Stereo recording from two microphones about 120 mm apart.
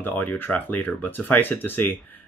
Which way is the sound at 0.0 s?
15° left (ahead or behind).